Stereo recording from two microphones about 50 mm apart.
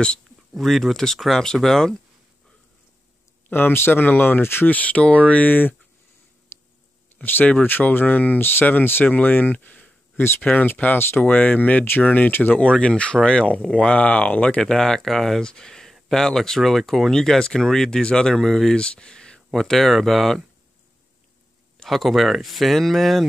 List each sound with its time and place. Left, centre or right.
0.6 s speech: centre
3.5 s speech: left
4.4 s speech: left
4.6 s speech: left
5.5 s speech: left
7.2 s speech: left
8.4 s speech: left
14.6 s speech: centre
18.8 s a sound: centre
19.6 s speech: centre
21.8 s speech: centre